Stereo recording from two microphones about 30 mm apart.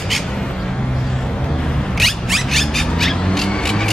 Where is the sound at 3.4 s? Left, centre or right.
Left.